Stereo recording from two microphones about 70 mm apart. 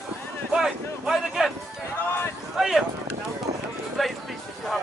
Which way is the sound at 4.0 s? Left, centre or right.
Centre.